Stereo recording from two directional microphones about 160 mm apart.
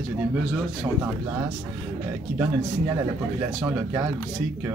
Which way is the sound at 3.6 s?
20° right (ahead or behind).